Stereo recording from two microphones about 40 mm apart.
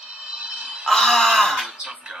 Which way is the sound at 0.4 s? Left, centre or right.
Right.